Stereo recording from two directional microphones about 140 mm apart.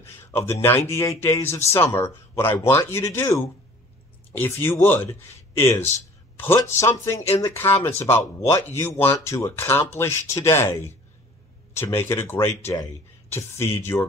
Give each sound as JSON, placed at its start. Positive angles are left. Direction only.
{"t": 0.0, "sound": "speech", "side_deg": 20}